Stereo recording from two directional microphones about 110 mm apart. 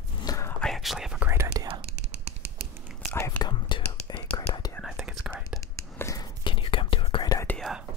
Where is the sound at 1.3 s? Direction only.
25° right (ahead or behind).